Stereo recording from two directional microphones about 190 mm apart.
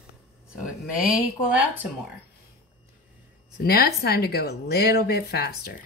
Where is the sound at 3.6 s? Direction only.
55° left (ahead or behind).